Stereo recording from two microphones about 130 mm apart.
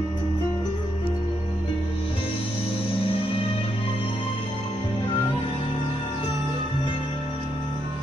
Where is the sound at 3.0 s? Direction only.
45° left (ahead or behind).